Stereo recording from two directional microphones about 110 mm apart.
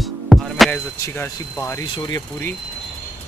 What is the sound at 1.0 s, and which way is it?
Speech, 25° left (ahead or behind).